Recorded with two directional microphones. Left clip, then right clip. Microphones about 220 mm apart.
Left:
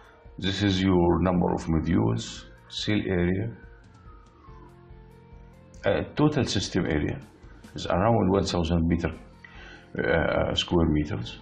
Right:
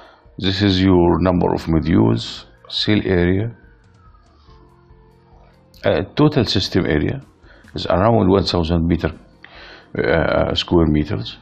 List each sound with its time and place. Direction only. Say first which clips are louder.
0.4 s speech: right 9 dB; 35° right (ahead or behind)
5.8 s speech: right 8 dB; 35° right (ahead or behind)